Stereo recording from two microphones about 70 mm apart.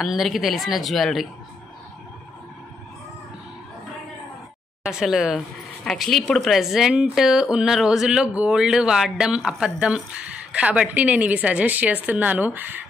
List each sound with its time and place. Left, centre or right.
0.0 s a woman's voice: centre
4.8 s a woman's voice: centre; by 12.8 s right